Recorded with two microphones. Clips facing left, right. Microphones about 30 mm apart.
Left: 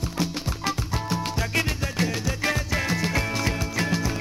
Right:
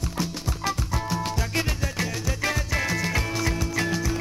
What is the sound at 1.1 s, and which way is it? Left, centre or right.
Music, centre.